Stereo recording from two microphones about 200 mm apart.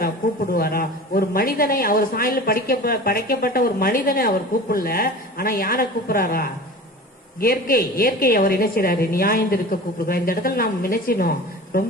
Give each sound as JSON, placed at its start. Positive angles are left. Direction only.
{"t": 0.0, "sound": "a woman's voice", "side_deg": 50}